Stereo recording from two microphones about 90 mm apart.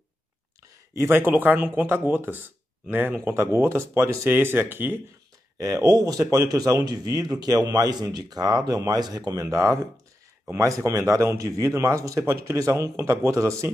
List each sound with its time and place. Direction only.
1.0 s speech: 25° right (ahead or behind)
5.6 s speech: 35° right (ahead or behind)